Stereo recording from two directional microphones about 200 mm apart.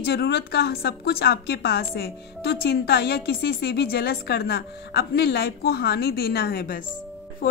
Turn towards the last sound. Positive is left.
turn(degrees=45)  # may be behind; listen again after turning